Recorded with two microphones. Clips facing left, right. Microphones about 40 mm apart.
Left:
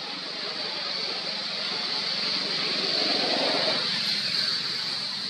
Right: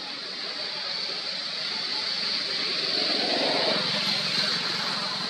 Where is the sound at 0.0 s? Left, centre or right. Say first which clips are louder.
Left 1 dB; centre.